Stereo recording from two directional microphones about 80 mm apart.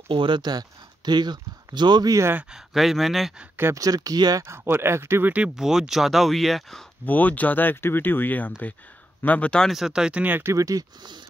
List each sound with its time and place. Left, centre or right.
0.1 s speech: right
2.5 s speech: centre
3.7 s speech: right
4.5 s speech: right
5.6 s speech: centre
7.1 s speech: centre
9.7 s speech: centre
10.2 s speech: right
10.5 s speech: right
11.0 s speech: right